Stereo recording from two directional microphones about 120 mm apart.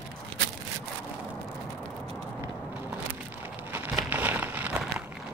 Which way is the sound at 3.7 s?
20° right (ahead or behind).